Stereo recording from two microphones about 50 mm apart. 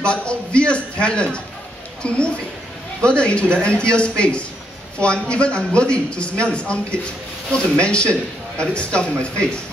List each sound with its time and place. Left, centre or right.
0.0 s speech: left